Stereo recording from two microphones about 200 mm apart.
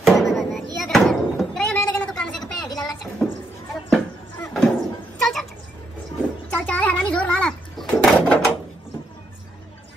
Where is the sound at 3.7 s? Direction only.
Centre (ahead or behind).